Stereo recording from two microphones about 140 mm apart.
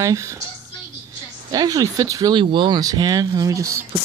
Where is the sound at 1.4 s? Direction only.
25° right (ahead or behind).